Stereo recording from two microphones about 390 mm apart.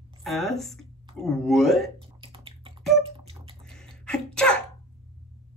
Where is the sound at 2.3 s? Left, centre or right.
Centre.